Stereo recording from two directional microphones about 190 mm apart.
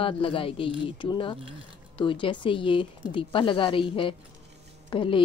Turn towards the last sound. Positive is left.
turn(degrees=25)  # may be behind; listen again after turning